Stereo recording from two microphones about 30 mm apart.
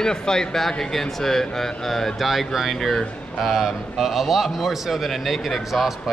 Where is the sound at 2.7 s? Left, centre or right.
Centre.